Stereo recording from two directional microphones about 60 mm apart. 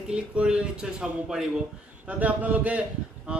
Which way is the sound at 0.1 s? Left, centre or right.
Centre.